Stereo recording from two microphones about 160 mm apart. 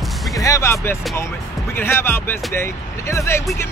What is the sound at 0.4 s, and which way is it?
Speech, 20° left (ahead or behind).